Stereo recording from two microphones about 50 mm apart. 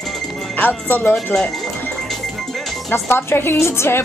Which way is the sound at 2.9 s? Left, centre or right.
Left.